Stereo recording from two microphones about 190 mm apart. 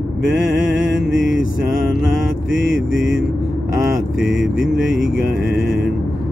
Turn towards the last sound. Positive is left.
turn(degrees=0)  # may be behind; listen again after turning